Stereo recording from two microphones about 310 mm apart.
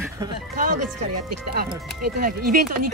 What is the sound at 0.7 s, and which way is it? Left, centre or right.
Speech, right.